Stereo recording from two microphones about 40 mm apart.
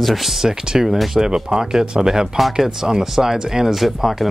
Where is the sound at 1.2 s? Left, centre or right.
Centre.